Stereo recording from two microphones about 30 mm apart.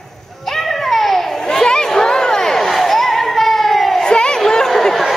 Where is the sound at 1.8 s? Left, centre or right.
Centre.